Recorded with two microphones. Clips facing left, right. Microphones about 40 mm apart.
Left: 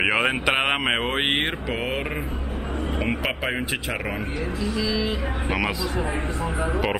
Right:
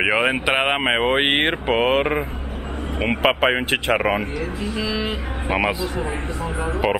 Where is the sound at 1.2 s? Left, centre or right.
Right.